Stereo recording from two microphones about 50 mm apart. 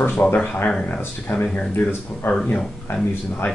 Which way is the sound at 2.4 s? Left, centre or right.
Left.